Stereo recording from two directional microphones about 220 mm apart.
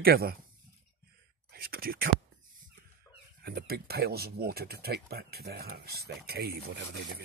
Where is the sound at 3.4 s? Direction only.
45° right (ahead or behind).